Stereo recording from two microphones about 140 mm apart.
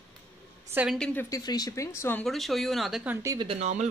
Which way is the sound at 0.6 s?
10° right (ahead or behind).